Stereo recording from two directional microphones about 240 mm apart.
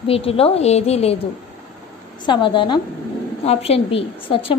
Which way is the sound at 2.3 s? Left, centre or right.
Centre.